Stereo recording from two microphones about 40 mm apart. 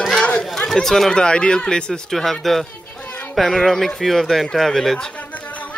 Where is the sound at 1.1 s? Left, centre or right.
Left.